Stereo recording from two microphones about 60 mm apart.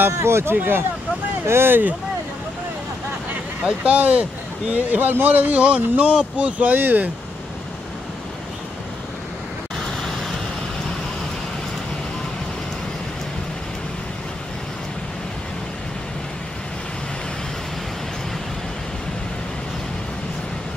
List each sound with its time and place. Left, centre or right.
0.1 s speech: right
3.6 s speech: right